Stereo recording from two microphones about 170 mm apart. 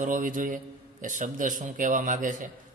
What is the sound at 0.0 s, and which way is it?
A man's voice, 50° right (ahead or behind).